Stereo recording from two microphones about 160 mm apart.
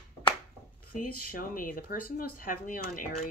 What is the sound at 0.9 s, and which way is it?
Speech, 60° left (ahead or behind).